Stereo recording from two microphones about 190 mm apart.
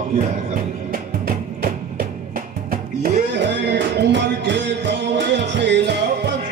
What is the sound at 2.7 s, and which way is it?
Music, 60° right (ahead or behind).